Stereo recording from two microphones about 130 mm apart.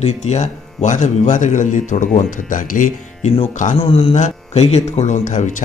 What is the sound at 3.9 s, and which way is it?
Speech, 45° left (ahead or behind).